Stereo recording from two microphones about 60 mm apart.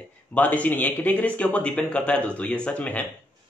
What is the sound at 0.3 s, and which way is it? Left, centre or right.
A man's voice, left.